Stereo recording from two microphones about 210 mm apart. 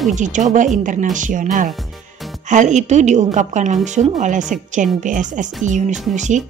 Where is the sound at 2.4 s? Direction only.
35° right (ahead or behind).